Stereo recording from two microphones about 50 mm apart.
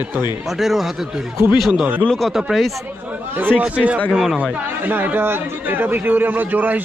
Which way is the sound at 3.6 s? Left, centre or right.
Right.